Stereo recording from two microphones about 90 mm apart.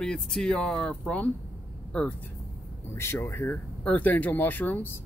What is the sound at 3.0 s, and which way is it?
Speech, 30° left (ahead or behind).